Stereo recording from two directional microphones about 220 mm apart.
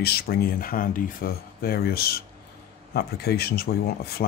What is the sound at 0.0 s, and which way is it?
Speech, 45° left (ahead or behind).